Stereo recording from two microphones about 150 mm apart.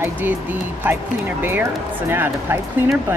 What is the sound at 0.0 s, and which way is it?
Speech, 15° right (ahead or behind).